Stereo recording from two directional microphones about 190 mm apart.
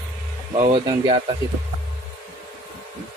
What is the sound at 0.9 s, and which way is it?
Speech, 25° right (ahead or behind).